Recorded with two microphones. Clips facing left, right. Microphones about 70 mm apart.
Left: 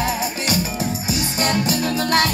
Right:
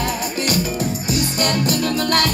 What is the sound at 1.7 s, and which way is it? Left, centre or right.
Music, left.